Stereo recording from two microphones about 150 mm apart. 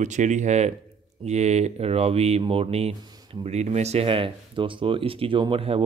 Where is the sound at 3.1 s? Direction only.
30° right (ahead or behind).